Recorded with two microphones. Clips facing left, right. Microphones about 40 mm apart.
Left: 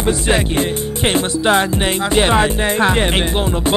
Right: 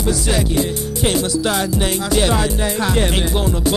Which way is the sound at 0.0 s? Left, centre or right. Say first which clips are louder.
Left 3 dB; left.